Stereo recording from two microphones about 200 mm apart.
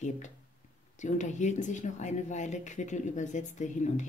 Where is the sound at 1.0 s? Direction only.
35° left (ahead or behind).